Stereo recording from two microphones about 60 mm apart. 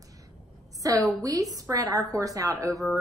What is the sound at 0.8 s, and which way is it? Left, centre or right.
A woman's voice, right.